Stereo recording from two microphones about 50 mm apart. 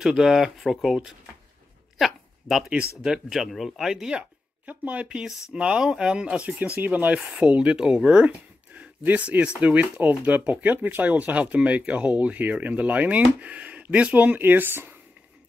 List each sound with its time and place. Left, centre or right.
0.0 s speech: centre
2.0 s a sound: centre
3.0 s speech: centre
4.6 s speech: right
5.0 s speech: centre; by 7.2 s right
7.2 s speech: right
8.3 s a sound: right
9.6 s speech: right